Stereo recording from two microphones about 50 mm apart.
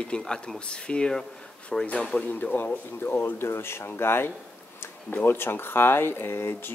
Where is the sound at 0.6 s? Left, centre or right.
Centre.